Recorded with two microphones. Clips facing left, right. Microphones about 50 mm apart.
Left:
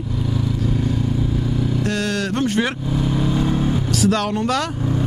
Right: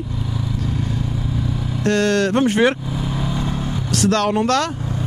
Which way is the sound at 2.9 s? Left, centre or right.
Centre.